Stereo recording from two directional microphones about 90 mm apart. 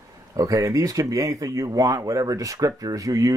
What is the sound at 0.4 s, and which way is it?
Speech, 40° right (ahead or behind).